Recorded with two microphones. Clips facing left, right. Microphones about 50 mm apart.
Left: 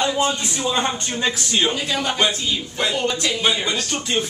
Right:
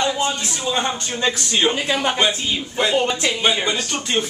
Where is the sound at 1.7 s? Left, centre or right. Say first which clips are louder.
Right 2 dB; right.